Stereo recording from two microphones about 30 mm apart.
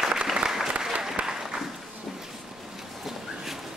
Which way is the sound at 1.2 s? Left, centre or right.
Right.